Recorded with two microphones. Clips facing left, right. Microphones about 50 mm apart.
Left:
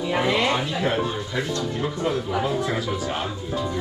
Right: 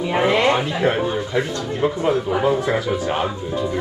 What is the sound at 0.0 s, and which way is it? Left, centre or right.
Speech, right.